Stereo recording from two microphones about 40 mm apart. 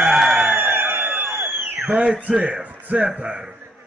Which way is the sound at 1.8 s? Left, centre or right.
Right.